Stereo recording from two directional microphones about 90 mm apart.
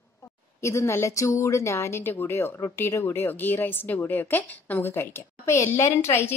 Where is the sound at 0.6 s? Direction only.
30° left (ahead or behind).